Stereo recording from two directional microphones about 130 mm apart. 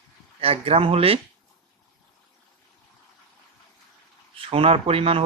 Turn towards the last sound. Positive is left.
turn(degrees=-45)  # may be behind; listen again after turning